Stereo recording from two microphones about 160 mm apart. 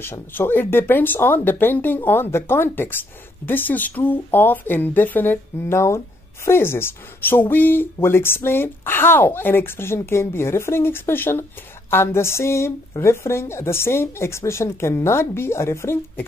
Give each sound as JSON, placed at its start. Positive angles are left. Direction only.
{"t": 0.0, "sound": "speech", "side_deg": 15}